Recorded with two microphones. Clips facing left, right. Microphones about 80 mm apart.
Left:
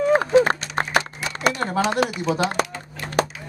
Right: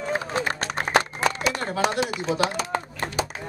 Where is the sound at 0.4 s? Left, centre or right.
Left.